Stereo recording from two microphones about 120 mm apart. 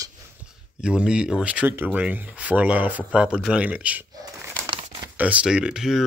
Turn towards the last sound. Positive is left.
turn(degrees=-5)  # may be behind; listen again after turning